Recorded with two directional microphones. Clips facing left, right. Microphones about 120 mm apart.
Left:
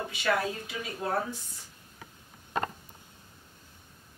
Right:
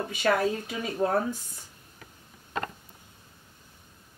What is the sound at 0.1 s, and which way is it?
Speech, 45° right (ahead or behind).